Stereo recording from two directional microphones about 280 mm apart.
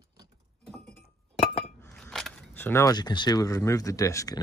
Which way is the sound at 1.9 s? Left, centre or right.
Centre.